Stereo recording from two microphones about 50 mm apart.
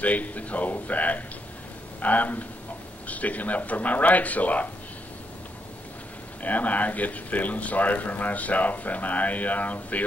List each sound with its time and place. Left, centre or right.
0.0 s speech: left
6.4 s speech: left